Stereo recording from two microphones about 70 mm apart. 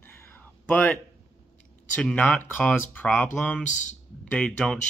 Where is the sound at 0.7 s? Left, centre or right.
Left.